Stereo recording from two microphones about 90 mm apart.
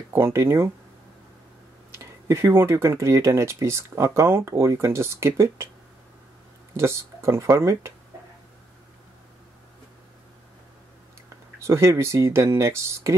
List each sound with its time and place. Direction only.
0.1 s speech: 30° right (ahead or behind)
2.0 s speech: 35° right (ahead or behind)
6.8 s speech: 30° right (ahead or behind)
11.6 s speech: 30° right (ahead or behind)